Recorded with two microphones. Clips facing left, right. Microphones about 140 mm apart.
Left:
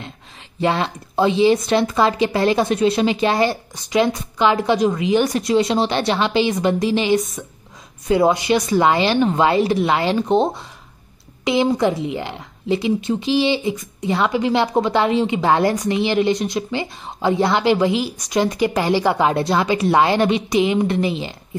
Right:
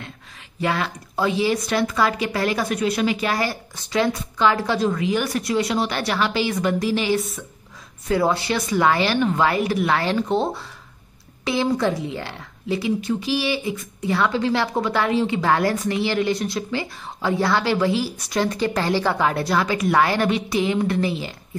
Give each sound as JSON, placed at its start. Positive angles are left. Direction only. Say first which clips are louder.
{"t": 0.6, "sound": "a woman's voice", "louder": "left 4 dB", "side_deg": 25}